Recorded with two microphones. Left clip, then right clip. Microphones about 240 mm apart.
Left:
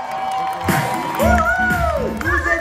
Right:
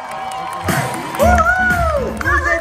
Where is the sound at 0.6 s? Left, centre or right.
Centre.